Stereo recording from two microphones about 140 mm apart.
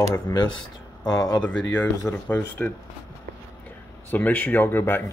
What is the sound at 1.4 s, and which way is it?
Speech, 10° left (ahead or behind).